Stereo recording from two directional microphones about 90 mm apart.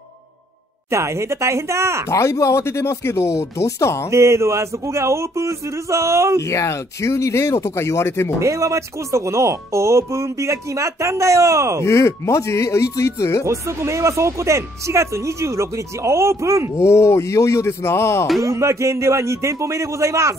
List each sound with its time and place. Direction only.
0.8 s speech: 30° right (ahead or behind)
2.0 s speech: 35° left (ahead or behind)
4.1 s speech: 30° right (ahead or behind)
6.4 s speech: 35° left (ahead or behind)
8.4 s speech: 35° right (ahead or behind)
11.8 s speech: 30° left (ahead or behind)
13.5 s speech: 30° right (ahead or behind)
16.7 s speech: 30° left (ahead or behind)
18.4 s speech: 35° right (ahead or behind)